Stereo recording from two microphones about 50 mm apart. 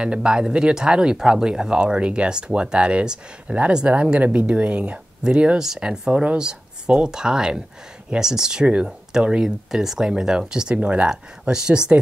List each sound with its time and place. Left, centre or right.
0.0 s speech: centre